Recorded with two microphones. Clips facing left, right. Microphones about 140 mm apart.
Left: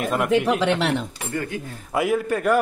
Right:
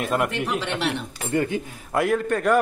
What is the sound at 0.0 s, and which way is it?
Speech, centre (ahead or behind).